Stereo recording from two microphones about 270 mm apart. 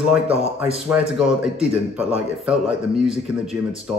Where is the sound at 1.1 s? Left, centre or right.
Centre.